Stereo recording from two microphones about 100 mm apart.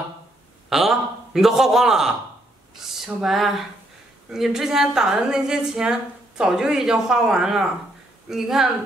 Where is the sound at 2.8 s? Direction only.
5° right (ahead or behind).